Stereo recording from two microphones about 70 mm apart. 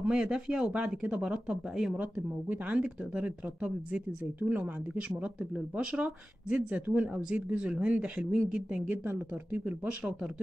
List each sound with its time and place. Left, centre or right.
0.0 s speech: centre; by 9.8 s right
9.8 s speech: centre